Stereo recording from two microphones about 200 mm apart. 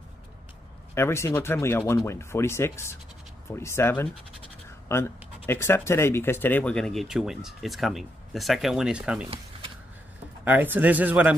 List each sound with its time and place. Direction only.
0.9 s speech: 15° left (ahead or behind)
4.6 s scratch: 10° left (ahead or behind)
5.5 s speech: 15° left (ahead or behind); by 9.3 s 5° right (ahead or behind)
9.5 s a sound: 30° right (ahead or behind)
10.4 s speech: 10° right (ahead or behind)